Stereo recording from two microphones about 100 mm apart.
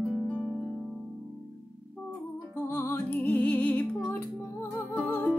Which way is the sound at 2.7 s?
20° left (ahead or behind).